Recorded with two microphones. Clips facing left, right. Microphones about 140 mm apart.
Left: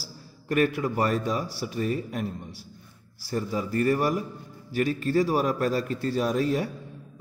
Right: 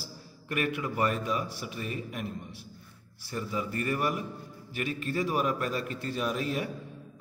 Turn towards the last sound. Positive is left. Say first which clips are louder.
# left 6 dB
turn(degrees=35)  # may be behind; listen again after turning